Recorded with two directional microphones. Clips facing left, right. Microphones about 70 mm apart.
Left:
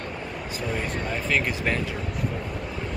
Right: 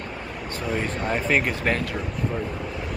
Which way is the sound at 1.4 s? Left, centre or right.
Centre.